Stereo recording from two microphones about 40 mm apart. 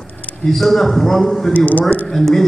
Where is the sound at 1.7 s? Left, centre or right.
Left.